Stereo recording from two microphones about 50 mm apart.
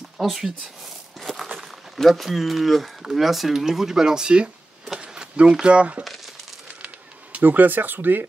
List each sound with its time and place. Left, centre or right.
0.2 s speech: centre
1.2 s walk: centre
2.0 s speech: centre; by 6.0 s right
7.3 s speech: right